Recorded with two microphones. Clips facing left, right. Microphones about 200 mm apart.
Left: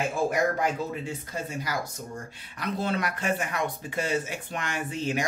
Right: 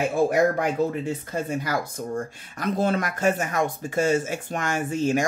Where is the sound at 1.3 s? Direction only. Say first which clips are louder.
Right 5 dB; 55° right (ahead or behind).